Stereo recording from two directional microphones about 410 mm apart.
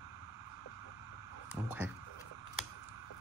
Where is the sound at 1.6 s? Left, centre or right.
Centre.